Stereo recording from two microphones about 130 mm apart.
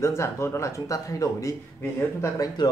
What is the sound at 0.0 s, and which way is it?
Speech, 20° left (ahead or behind).